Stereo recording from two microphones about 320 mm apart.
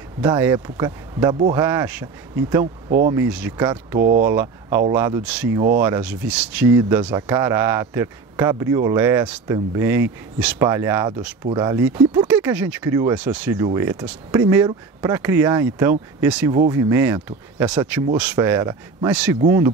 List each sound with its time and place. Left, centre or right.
0.2 s speech: centre
2.6 s speech: right
3.1 s speech: centre